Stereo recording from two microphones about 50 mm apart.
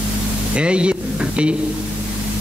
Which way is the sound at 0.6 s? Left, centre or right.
Right.